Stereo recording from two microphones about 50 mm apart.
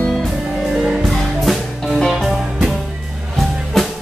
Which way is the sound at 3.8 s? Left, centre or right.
Centre.